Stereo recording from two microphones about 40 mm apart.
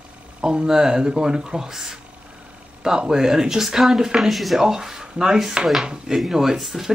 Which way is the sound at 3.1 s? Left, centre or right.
Centre.